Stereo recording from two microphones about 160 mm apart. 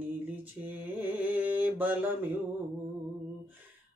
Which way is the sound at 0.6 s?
20° right (ahead or behind).